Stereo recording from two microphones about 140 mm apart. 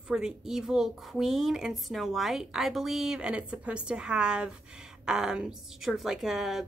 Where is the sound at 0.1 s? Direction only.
5° right (ahead or behind).